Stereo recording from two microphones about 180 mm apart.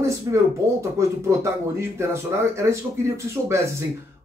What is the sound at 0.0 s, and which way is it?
Speech, 15° right (ahead or behind).